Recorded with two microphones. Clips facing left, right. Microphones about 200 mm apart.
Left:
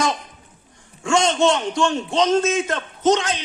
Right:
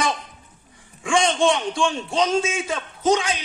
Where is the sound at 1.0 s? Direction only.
15° right (ahead or behind).